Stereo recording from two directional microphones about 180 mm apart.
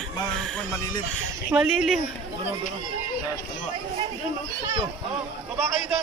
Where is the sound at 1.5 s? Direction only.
5° right (ahead or behind).